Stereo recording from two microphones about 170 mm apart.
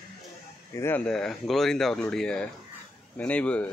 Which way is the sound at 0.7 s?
10° left (ahead or behind).